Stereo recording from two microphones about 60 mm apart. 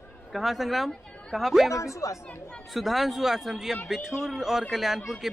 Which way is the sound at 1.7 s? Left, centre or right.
Left.